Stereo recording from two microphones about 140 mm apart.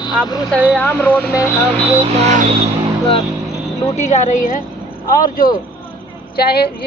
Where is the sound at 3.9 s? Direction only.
55° left (ahead or behind).